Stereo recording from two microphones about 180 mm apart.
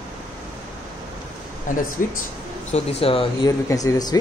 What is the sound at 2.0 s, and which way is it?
Speech, 50° left (ahead or behind).